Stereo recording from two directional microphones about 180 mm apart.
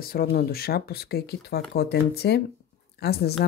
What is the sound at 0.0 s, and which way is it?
A woman's voice, 55° left (ahead or behind).